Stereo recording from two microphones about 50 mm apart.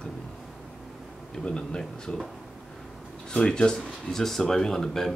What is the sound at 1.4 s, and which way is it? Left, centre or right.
Speech, centre.